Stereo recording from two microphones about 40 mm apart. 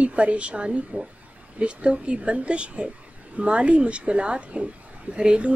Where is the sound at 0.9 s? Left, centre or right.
Right.